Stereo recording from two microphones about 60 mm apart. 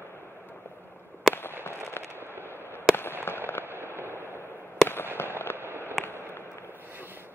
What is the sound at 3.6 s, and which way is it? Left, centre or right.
Fireworks, right.